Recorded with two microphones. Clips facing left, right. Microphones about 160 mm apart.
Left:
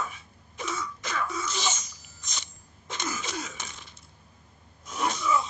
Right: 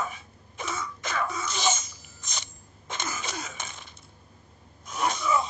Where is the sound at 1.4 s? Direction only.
55° right (ahead or behind).